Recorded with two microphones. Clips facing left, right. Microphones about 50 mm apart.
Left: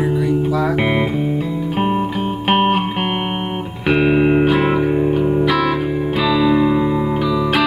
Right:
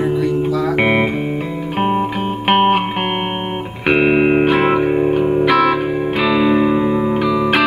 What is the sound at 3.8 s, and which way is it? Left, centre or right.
Music, right.